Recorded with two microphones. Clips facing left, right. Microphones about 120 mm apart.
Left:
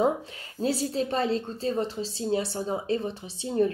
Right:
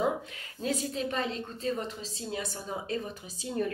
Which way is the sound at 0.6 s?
35° left (ahead or behind).